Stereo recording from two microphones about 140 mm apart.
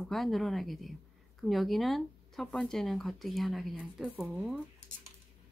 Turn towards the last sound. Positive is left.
turn(degrees=-5)  # may be behind; listen again after turning